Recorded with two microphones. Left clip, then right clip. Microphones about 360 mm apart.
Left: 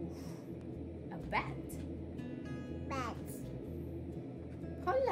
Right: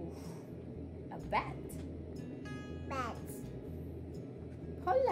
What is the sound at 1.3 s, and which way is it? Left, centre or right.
Music, centre.